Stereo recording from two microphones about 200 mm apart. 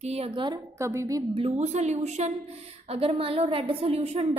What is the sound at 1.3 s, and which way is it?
A woman's voice, 30° right (ahead or behind).